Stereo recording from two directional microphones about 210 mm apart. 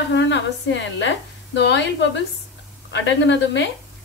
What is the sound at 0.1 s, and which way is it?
A woman's voice, 60° left (ahead or behind).